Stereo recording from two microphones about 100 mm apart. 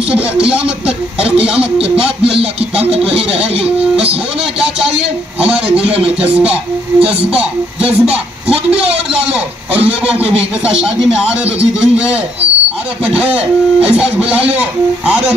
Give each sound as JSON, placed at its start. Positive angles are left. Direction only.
{"t": 0.1, "sound": "speech", "side_deg": -10}
{"t": 2.3, "sound": "music", "side_deg": -80}
{"t": 4.4, "sound": "a man's voice", "side_deg": -10}
{"t": 5.8, "sound": "music", "side_deg": -75}
{"t": 6.0, "sound": "a man's voice", "side_deg": -10}
{"t": 10.1, "sound": "music", "side_deg": -75}
{"t": 10.6, "sound": "a man's voice", "side_deg": -5}